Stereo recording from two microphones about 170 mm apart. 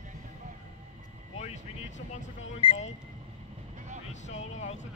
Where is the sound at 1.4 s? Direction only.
45° left (ahead or behind).